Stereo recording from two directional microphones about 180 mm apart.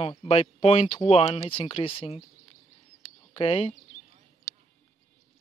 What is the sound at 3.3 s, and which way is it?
Speech, 30° left (ahead or behind).